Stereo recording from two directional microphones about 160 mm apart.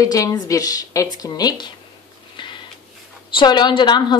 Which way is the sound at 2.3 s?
30° left (ahead or behind).